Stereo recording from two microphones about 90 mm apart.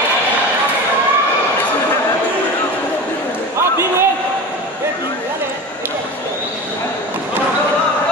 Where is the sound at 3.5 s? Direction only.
30° right (ahead or behind).